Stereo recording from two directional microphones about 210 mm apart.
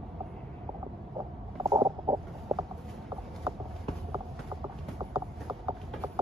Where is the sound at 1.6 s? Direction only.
20° right (ahead or behind).